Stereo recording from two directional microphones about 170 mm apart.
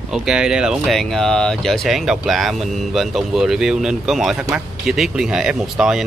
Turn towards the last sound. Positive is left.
turn(degrees=0)  # may be behind; listen again after turning